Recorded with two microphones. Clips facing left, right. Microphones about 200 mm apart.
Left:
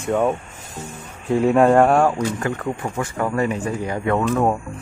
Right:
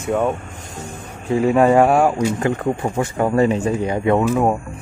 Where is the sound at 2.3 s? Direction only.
25° right (ahead or behind).